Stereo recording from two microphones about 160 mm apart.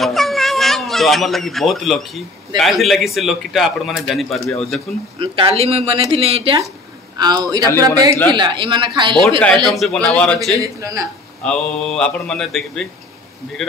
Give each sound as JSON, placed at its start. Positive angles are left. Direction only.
{"t": 0.0, "sound": "speech", "side_deg": 0}
{"t": 5.2, "sound": "speech", "side_deg": -35}
{"t": 5.9, "sound": "speech", "side_deg": -20}
{"t": 6.1, "sound": "speech", "side_deg": -35}
{"t": 9.4, "sound": "a man's voice", "side_deg": 0}
{"t": 10.6, "sound": "speech", "side_deg": -20}
{"t": 11.4, "sound": "a man's voice", "side_deg": 5}